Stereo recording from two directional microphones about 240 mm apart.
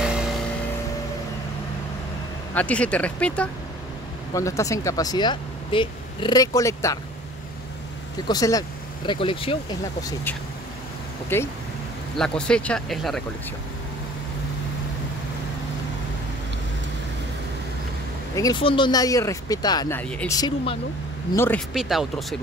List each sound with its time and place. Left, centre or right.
0.0 s vehicle: centre
2.5 s speech: centre
8.3 s speech: centre
18.3 s speech: centre